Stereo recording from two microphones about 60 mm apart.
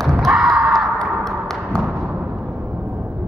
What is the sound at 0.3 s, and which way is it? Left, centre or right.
Slam, centre.